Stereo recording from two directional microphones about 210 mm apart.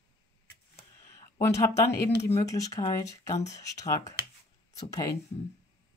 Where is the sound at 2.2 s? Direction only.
30° left (ahead or behind).